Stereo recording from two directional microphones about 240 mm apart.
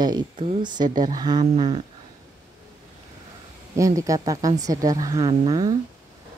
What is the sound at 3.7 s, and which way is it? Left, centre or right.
A woman's voice, centre.